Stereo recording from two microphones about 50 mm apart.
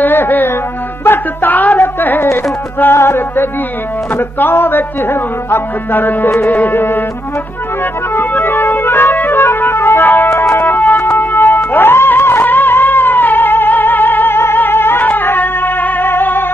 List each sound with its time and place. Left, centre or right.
0.0 s music: left
1.0 s a sound: left
2.8 s music: left
8.1 s music: left
10.5 s music: left
11.1 s music: left